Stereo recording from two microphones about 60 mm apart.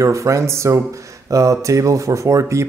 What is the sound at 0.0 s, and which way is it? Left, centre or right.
A man's voice, right.